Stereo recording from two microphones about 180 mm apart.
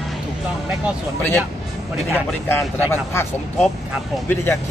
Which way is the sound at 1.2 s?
15° left (ahead or behind).